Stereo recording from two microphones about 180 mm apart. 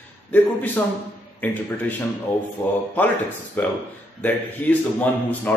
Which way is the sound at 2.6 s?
15° left (ahead or behind).